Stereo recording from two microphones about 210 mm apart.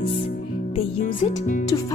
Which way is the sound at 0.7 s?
35° left (ahead or behind).